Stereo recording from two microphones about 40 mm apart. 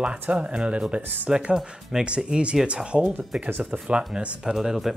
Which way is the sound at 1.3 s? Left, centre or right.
Centre.